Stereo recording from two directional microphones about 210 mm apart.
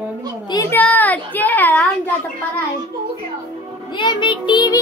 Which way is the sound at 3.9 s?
20° left (ahead or behind).